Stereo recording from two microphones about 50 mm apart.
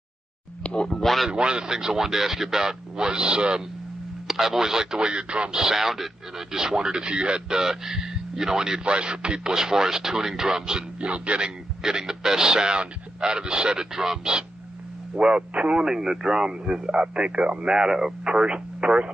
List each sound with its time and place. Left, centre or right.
0.7 s speech: centre
1.3 s speech: centre
4.3 s speech: centre